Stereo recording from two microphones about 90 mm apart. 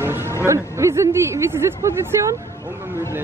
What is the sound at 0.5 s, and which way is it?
Speech, 35° right (ahead or behind).